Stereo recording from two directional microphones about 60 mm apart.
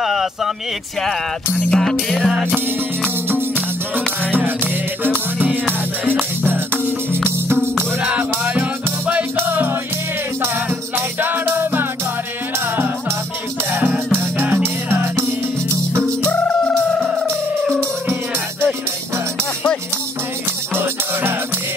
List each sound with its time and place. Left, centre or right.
0.0 s a sound: centre
1.7 s music: centre
3.3 s music: right
5.0 s music: right
8.1 s music: right
9.4 s music: right
11.0 s music: right
16.3 s fowl: left
16.7 s music: centre
20.7 s music: right